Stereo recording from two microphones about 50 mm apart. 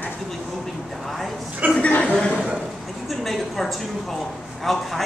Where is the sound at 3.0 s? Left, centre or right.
Centre.